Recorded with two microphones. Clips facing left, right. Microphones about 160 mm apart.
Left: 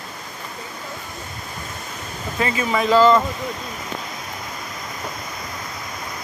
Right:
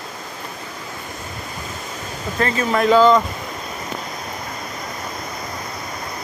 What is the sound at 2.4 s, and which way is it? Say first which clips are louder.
Speech: right 2 dB; 5° left (ahead or behind).